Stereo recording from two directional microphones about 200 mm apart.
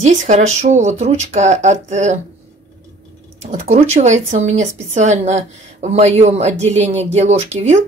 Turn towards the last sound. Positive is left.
turn(degrees=-35)  # may be behind; listen again after turning